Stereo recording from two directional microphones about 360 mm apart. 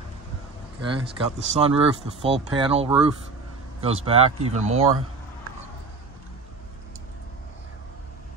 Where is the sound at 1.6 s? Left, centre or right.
Centre.